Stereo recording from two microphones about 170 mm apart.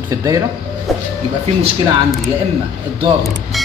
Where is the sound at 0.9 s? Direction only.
Centre (ahead or behind).